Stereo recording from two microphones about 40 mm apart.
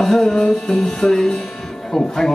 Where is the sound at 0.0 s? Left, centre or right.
Centre.